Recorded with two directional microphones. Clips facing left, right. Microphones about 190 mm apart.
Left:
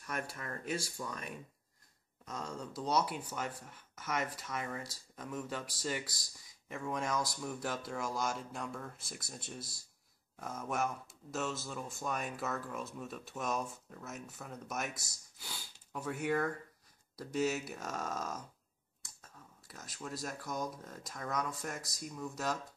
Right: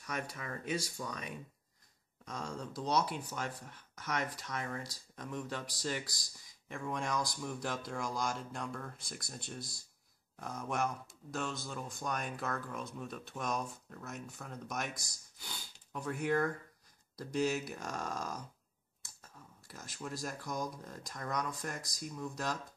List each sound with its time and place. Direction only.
0.0 s speech: centre (ahead or behind)